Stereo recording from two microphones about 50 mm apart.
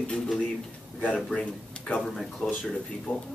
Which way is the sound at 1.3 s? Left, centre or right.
Left.